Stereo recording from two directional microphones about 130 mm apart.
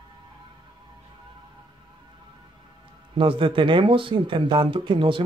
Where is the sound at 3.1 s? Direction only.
40° right (ahead or behind).